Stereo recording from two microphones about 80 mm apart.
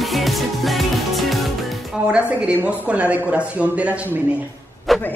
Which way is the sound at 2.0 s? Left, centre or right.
Centre.